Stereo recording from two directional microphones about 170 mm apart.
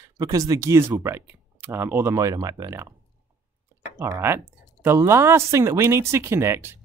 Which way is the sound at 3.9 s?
15° right (ahead or behind).